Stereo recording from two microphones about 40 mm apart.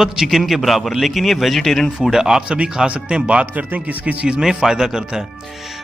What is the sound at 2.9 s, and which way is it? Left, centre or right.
Speech, right.